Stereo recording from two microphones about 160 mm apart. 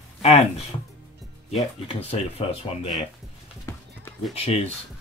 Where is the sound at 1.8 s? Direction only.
40° left (ahead or behind).